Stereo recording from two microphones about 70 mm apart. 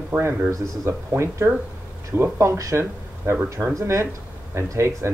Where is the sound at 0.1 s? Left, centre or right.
Right.